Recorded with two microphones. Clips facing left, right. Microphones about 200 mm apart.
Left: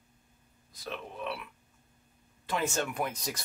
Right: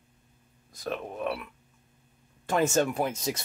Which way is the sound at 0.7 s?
50° right (ahead or behind).